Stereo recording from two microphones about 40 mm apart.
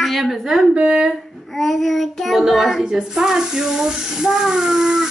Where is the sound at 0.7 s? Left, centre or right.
Right.